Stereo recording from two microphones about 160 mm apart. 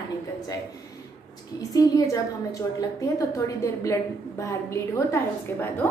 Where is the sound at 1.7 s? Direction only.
20° left (ahead or behind).